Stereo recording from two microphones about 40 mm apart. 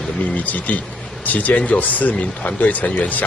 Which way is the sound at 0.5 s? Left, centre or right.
Left.